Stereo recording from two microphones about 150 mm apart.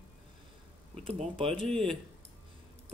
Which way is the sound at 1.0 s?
40° right (ahead or behind).